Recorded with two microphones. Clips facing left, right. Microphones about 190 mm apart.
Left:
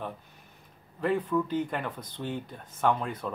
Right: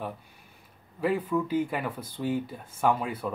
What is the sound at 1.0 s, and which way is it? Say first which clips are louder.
Speech: even; 5° right (ahead or behind).